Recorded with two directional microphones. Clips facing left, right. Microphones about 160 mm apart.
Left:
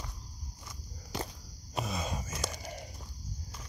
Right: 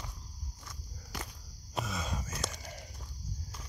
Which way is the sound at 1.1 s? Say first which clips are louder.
Left 5 dB; 25° left (ahead or behind).